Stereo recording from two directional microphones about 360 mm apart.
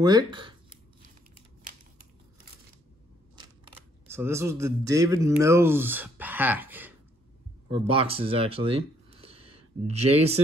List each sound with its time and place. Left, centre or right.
0.0 s speech: centre
3.3 s speech: centre